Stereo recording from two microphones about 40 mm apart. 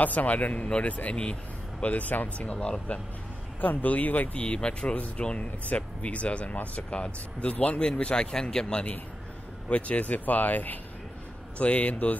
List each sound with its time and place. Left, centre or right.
0.0 s speech: left
1.1 s vehicle: left
1.9 s speech: left
2.5 s speech: left
3.6 s speech: left
4.4 s speech: left
7.8 s speech: left
9.7 s speech: left
11.5 s speech: left